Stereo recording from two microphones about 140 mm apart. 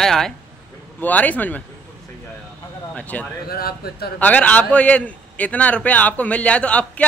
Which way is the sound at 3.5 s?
90° left.